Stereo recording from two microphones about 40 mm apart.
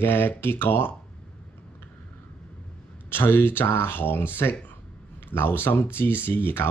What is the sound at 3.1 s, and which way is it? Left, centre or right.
Speech, left.